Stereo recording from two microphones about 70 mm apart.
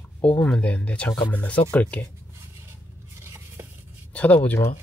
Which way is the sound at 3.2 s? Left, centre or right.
Right.